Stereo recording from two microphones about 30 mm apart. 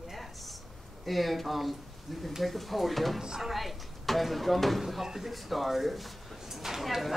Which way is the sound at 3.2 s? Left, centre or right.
Centre.